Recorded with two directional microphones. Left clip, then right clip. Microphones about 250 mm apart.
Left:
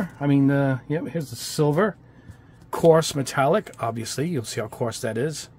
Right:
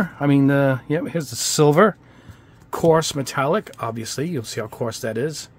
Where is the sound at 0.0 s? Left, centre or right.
Centre.